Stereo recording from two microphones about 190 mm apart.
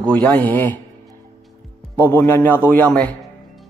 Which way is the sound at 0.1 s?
5° left (ahead or behind).